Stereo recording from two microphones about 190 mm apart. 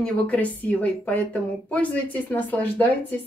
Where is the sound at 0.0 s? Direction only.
5° left (ahead or behind).